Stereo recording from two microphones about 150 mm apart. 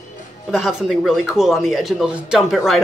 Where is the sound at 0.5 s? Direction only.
Centre (ahead or behind).